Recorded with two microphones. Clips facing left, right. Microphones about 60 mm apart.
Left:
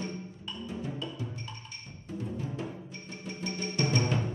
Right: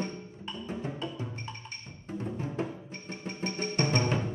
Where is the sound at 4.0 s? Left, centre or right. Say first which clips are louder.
Even; right.